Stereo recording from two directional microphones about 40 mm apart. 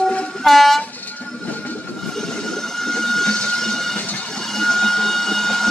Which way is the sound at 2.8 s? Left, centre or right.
Centre.